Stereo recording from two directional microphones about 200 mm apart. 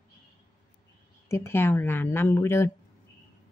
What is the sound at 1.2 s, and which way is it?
Speech, 10° left (ahead or behind).